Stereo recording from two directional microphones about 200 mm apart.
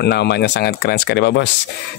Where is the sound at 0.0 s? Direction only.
55° left (ahead or behind).